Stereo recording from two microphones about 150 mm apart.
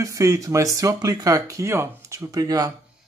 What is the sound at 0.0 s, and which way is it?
Speech, 20° right (ahead or behind).